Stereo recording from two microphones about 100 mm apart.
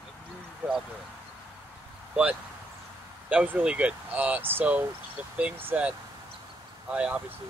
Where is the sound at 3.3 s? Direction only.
10° right (ahead or behind).